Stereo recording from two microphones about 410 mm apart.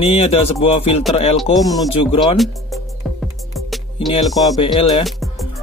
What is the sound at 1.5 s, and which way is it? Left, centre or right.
Speech, centre.